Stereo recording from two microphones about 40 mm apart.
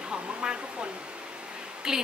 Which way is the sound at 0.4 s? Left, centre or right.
Right.